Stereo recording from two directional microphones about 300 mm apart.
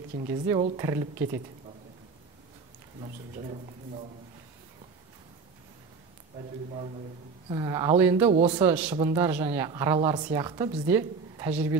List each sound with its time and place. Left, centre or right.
0.3 s a woman's voice: centre
3.0 s speech: right
7.4 s a woman's voice: centre
8.3 s speech: centre
8.6 s a woman's voice: centre